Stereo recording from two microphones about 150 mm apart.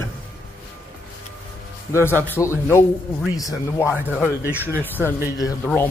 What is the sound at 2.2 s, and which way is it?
Speech, 15° left (ahead or behind).